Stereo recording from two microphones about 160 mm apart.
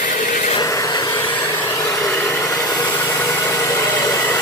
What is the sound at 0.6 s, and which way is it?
Hair dryer, 20° left (ahead or behind).